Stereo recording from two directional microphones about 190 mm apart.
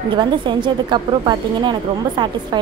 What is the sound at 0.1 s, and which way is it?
A woman's voice, 25° right (ahead or behind).